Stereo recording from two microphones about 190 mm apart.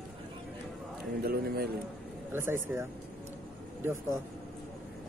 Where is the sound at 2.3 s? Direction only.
15° right (ahead or behind).